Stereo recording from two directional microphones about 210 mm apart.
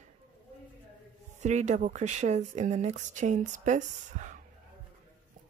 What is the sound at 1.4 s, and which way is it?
Speech, 35° right (ahead or behind).